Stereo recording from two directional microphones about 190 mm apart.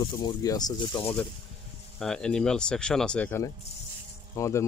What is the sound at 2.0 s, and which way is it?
Speech, 5° left (ahead or behind).